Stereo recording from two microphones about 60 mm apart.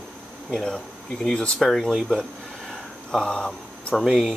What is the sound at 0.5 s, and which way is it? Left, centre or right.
Speech, centre.